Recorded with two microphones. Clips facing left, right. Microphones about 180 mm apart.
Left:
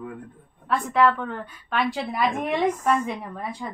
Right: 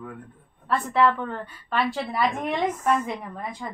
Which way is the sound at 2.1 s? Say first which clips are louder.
Left 1 dB; 10° left (ahead or behind).